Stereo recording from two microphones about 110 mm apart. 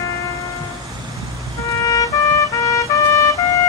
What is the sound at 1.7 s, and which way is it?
Music, 30° left (ahead or behind).